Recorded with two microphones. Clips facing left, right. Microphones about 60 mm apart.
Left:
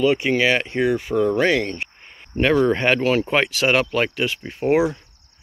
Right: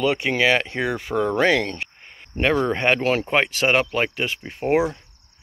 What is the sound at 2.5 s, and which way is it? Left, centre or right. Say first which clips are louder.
Speech: left 3 dB; right.